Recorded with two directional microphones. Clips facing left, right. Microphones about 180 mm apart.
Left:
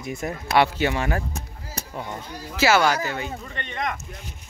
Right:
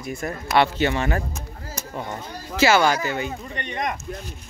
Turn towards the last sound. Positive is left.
turn(degrees=-15)  # may be behind; listen again after turning